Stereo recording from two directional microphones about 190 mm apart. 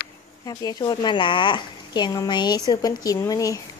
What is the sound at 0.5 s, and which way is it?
Speech, 20° left (ahead or behind).